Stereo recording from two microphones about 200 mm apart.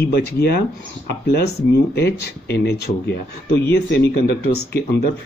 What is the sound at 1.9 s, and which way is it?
Speech, 55° left (ahead or behind).